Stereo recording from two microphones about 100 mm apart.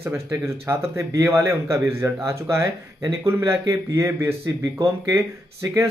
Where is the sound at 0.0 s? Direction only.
25° right (ahead or behind).